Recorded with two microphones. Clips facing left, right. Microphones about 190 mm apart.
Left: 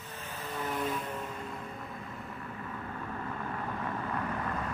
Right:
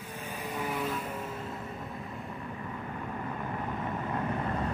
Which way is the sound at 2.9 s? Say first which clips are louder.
Right 2 dB; 20° right (ahead or behind).